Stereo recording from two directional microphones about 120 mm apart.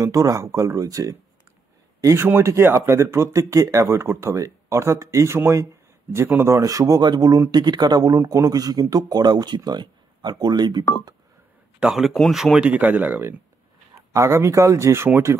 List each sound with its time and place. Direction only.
0.0 s speech: 25° right (ahead or behind)
11.8 s speech: centre (ahead or behind)
13.9 s speech: 25° right (ahead or behind)